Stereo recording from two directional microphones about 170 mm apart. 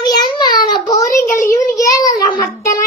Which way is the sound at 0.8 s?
20° left (ahead or behind).